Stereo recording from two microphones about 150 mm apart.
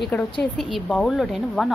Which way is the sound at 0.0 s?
10° left (ahead or behind).